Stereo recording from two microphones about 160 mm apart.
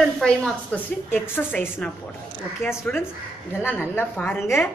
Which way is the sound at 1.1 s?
15° left (ahead or behind).